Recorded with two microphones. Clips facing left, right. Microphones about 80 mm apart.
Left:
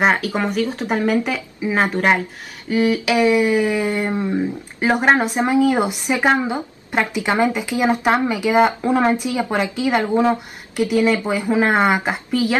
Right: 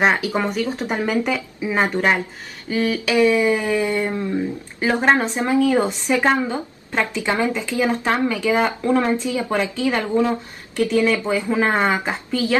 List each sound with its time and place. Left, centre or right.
0.0 s speech: centre